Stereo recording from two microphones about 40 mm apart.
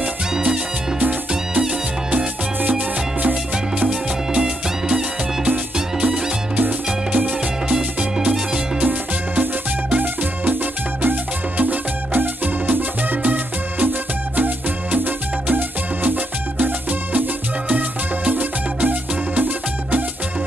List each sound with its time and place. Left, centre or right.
2.0 s music: right
4.3 s music: right
6.5 s salsa music: right
8.8 s music: right
11.5 s music: right
13.2 s music: right
15.5 s music: right